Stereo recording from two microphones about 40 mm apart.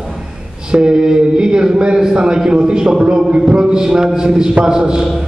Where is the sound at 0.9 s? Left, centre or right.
Centre.